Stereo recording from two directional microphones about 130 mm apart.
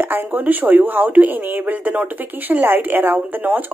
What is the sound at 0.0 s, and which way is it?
A woman's voice, 15° right (ahead or behind).